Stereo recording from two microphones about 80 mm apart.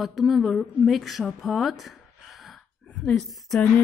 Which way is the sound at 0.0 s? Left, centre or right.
Centre.